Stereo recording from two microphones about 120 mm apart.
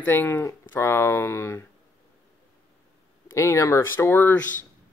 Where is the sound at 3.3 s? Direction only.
25° left (ahead or behind).